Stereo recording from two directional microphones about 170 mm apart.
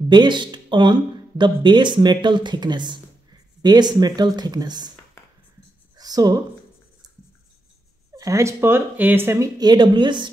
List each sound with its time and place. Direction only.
0.1 s speech: 25° right (ahead or behind)
5.9 s a sound: 20° right (ahead or behind)
8.2 s speech: 20° right (ahead or behind)